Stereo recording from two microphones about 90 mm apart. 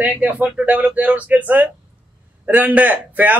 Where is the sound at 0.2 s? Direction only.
15° right (ahead or behind).